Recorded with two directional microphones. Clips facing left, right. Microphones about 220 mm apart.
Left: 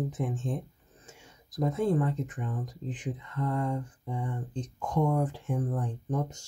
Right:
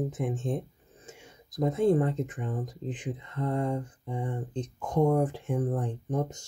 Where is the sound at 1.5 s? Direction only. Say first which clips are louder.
Right 3 dB; 20° right (ahead or behind).